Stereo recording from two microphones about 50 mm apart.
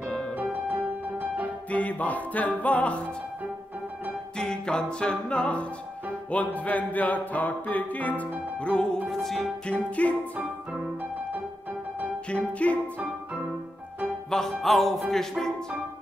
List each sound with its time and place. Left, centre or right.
0.4 s music: right
1.7 s music: left
4.4 s music: centre
9.0 s music: centre
9.7 s music: left
12.3 s music: left
14.3 s music: centre